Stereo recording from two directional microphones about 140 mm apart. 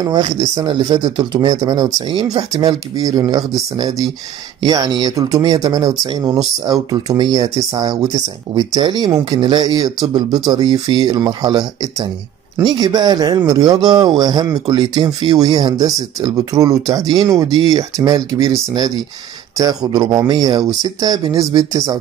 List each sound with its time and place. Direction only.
0.0 s speech: 30° right (ahead or behind)